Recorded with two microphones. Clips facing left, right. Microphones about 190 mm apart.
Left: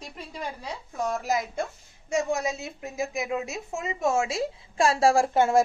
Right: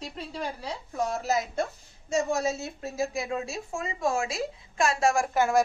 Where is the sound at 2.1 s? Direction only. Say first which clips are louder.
Even; 15° left (ahead or behind).